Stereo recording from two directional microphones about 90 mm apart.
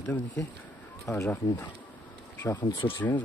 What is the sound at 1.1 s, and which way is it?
Speech, 35° left (ahead or behind).